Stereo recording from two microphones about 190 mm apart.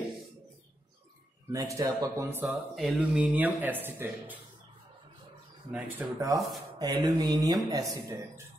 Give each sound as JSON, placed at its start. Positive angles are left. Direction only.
{"t": 1.5, "sound": "speech", "side_deg": -15}
{"t": 2.4, "sound": "speech", "side_deg": 0}
{"t": 5.7, "sound": "speech", "side_deg": -10}
{"t": 6.8, "sound": "mantra", "side_deg": -20}
{"t": 7.9, "sound": "speech", "side_deg": -15}